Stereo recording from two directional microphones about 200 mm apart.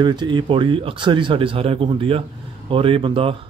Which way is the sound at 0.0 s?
20° right (ahead or behind).